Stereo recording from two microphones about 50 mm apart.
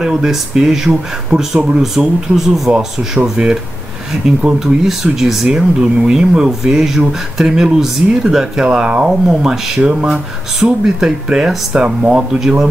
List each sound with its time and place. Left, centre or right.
0.0 s speech: centre
3.4 s speech: centre
5.5 s speech: centre
12.3 s speech: centre